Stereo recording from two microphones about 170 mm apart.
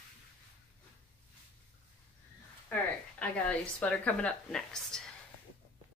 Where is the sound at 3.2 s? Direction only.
5° left (ahead or behind).